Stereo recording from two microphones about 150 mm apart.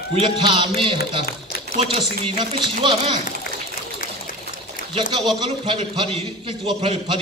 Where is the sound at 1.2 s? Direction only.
90° left.